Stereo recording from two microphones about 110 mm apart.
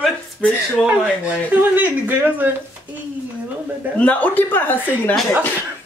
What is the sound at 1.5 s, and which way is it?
Speech, 15° right (ahead or behind).